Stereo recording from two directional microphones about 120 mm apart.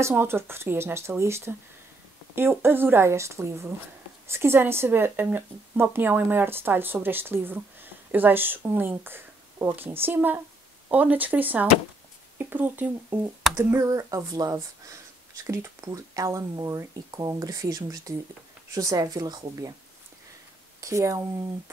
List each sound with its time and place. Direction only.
0.0 s speech: 20° right (ahead or behind)
20.8 s speech: 25° right (ahead or behind)